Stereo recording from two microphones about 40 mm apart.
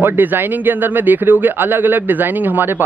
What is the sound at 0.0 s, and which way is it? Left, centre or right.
Speech, right.